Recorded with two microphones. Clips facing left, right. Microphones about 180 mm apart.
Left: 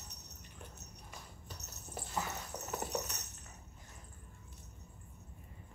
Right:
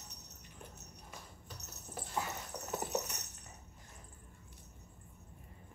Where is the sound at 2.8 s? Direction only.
5° right (ahead or behind).